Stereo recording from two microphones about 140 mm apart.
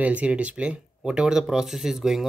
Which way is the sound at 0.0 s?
10° right (ahead or behind).